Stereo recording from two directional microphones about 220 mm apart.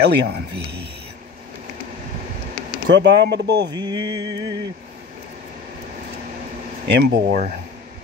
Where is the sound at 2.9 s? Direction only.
50° right (ahead or behind).